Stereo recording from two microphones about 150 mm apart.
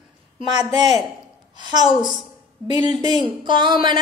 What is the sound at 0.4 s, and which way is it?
Speech, 30° right (ahead or behind).